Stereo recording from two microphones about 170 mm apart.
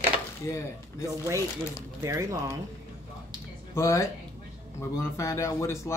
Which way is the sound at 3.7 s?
15° left (ahead or behind).